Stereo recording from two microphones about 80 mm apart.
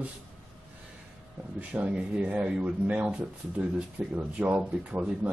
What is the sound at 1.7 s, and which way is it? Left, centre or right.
A man's voice, centre.